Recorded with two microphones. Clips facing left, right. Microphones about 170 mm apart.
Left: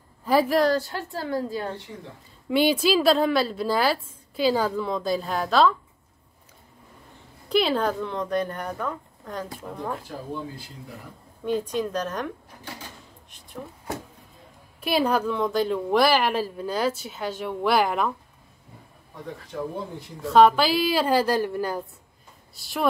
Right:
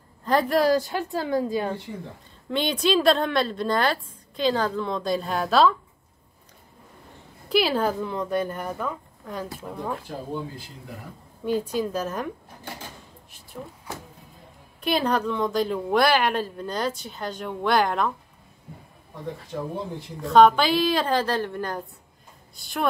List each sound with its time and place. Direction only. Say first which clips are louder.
0.2 s a woman's voice: left 1 dB; 5° left (ahead or behind)
0.7 s a woman's voice: right 2 dB; 15° right (ahead or behind)
2.5 s a woman's voice: left 2 dB; 5° left (ahead or behind)
7.4 s a woman's voice: even; 5° right (ahead or behind)
11.4 s a woman's voice: right 1 dB; 5° right (ahead or behind)
14.8 s a woman's voice: left 1 dB; 5° left (ahead or behind)
20.2 s a woman's voice: right 1 dB; centre (ahead or behind)